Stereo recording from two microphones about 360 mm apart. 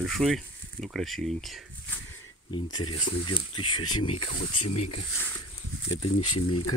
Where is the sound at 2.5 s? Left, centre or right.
Centre.